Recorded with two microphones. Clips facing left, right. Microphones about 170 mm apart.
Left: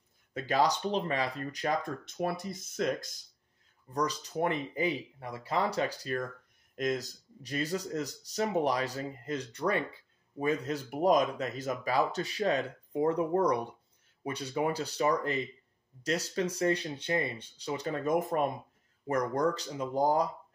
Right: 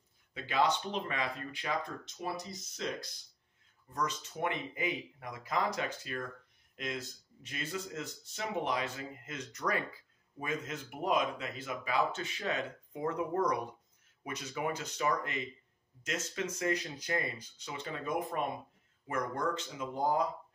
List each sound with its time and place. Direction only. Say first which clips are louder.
0.3 s speech: left 3 dB; 40° left (ahead or behind)
3.9 s speech: left 5 dB; 35° left (ahead or behind)